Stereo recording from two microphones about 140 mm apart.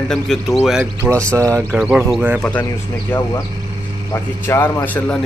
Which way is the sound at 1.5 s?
20° right (ahead or behind).